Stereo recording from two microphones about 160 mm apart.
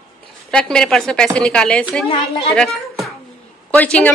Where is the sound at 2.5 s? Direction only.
Centre (ahead or behind).